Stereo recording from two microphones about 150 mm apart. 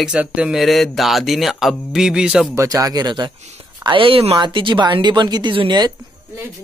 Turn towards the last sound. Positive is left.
turn(degrees=-30)  # may be behind; listen again after turning